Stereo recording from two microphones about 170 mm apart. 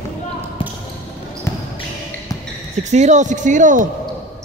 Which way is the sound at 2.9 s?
45° right (ahead or behind).